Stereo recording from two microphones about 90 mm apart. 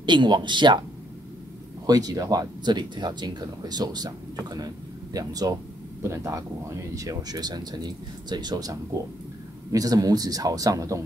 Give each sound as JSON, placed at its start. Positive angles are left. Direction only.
{"t": 0.0, "sound": "speech", "side_deg": -60}
{"t": 1.9, "sound": "speech", "side_deg": -45}
{"t": 2.6, "sound": "speech", "side_deg": -55}
{"t": 6.0, "sound": "speech", "side_deg": -35}